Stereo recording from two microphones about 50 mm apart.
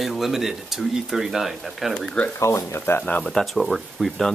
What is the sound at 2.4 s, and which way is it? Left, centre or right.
Speech, left.